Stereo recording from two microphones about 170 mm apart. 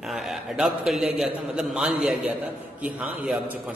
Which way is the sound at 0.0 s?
Centre (ahead or behind).